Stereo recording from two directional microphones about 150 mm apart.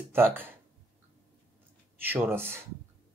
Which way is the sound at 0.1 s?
15° right (ahead or behind).